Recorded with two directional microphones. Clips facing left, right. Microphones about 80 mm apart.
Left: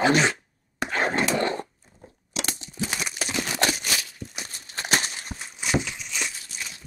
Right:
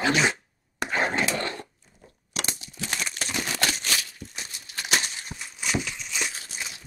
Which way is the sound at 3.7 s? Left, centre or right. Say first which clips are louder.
Even; centre.